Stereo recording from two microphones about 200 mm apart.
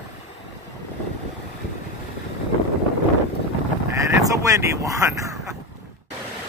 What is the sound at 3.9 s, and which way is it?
Speech, 15° right (ahead or behind).